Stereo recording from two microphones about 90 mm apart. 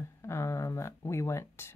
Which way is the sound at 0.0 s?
30° left (ahead or behind).